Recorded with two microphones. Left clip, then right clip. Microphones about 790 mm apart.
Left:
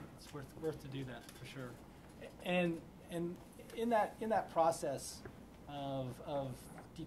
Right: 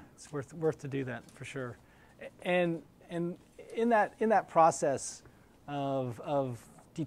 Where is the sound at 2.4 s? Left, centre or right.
Right.